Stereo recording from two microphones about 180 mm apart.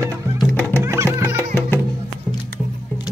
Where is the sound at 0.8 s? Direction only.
15° right (ahead or behind).